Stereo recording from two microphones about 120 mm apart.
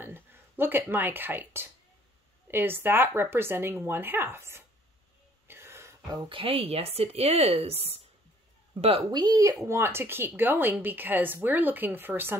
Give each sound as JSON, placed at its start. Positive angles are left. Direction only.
{"t": 0.0, "sound": "a woman's voice", "side_deg": -20}
{"t": 5.5, "sound": "a sound", "side_deg": -20}
{"t": 6.2, "sound": "speech", "side_deg": -50}
{"t": 9.1, "sound": "a woman's voice", "side_deg": -35}